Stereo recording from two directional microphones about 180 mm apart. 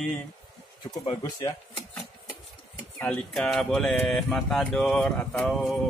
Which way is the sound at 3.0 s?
5° left (ahead or behind).